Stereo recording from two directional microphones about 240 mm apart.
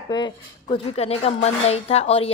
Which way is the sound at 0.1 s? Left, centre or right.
Centre.